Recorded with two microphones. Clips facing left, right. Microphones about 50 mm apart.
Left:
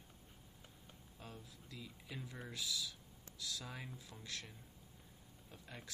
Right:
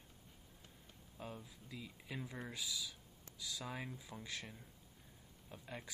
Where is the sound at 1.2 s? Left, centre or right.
Centre.